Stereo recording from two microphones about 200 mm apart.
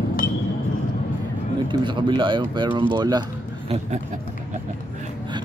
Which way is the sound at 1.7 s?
25° right (ahead or behind).